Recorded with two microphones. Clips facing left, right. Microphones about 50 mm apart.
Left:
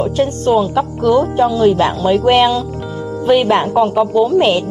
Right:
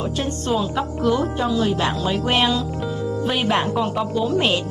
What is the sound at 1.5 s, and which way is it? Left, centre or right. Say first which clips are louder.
Speech: left 8 dB; left.